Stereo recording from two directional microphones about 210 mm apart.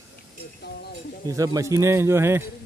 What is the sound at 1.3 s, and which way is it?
Speech, 15° right (ahead or behind).